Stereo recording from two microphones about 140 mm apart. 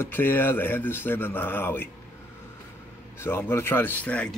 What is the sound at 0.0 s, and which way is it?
Speech, 15° left (ahead or behind).